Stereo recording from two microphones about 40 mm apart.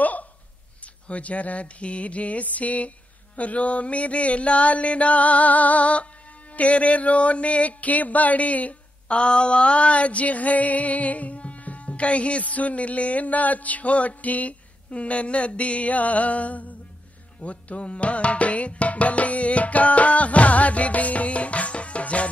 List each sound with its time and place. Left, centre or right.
0.0 s a sound: left
1.0 s music: left
9.2 s music: left
17.4 s tabla: left